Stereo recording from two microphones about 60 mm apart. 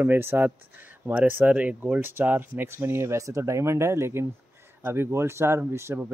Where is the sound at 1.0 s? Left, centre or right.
Right.